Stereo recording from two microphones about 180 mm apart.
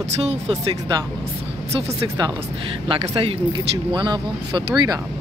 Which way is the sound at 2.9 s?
30° right (ahead or behind).